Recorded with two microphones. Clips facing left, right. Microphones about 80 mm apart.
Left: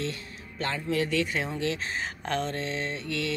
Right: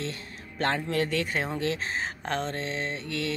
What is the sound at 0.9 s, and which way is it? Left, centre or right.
Speech, right.